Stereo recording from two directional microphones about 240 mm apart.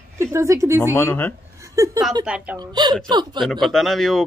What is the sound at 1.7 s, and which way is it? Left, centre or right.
Speech, centre.